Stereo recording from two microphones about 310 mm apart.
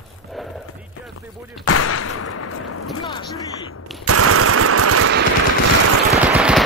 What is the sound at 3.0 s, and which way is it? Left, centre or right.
Speech, centre.